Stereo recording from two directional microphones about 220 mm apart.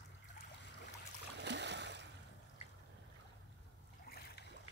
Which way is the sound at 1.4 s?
50° right (ahead or behind).